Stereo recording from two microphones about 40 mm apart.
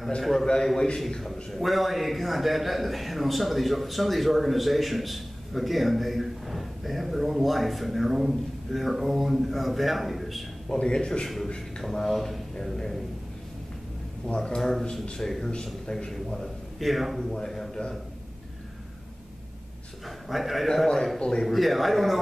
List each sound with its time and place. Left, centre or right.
0.2 s a man's voice: centre
10.8 s a man's voice: left
11.4 s beatboxing: centre
11.8 s a man's voice: centre
14.2 s a man's voice: left
14.6 s a man's voice: centre
16.8 s a man's voice: centre
17.4 s a man's voice: centre
20.2 s a man's voice: centre
20.6 s a man's voice: centre